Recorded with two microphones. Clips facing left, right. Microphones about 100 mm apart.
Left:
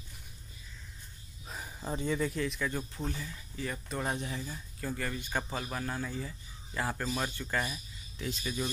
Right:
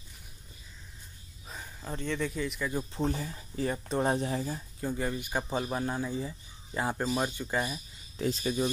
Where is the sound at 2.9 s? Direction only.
40° right (ahead or behind).